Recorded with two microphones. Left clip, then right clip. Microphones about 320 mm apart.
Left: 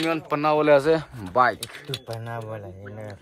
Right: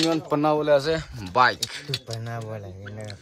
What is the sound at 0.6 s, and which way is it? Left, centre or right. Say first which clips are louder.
Speech: left 3 dB; left.